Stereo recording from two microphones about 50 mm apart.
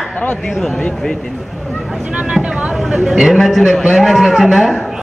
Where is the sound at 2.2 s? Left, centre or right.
Centre.